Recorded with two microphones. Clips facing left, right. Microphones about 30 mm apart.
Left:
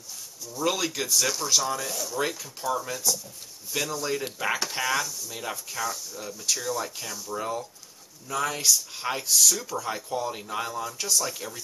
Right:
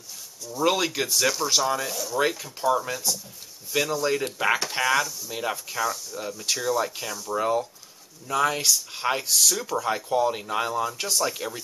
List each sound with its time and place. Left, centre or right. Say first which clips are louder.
0.5 s speech: right 4 dB; centre
11.0 s speech: right 2 dB; right